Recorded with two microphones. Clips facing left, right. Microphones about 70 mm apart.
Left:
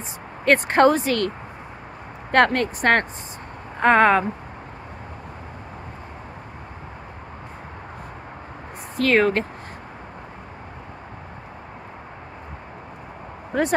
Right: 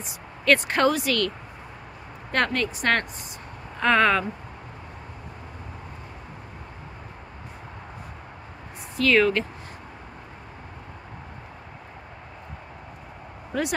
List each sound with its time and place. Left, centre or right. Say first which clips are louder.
0.5 s speech: left 4 dB; left
2.3 s speech: left 7 dB; left
8.9 s speech: left 2 dB; left
13.5 s speech: left 5 dB; left